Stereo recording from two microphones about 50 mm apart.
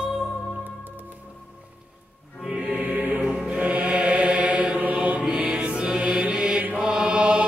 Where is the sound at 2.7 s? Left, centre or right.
Right.